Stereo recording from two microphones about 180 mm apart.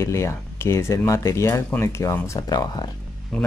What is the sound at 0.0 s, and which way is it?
Speech, 15° left (ahead or behind).